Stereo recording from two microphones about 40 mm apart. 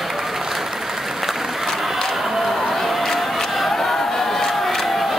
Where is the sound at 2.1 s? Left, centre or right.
Centre.